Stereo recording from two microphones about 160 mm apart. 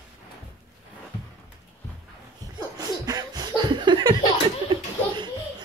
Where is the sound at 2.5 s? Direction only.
25° right (ahead or behind).